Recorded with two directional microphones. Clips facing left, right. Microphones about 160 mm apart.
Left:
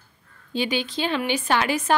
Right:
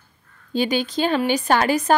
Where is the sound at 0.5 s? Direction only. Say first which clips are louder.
Right 4 dB; 45° right (ahead or behind).